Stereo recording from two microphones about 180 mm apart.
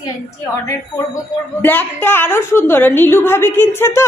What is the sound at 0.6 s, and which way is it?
A woman's voice, 20° left (ahead or behind).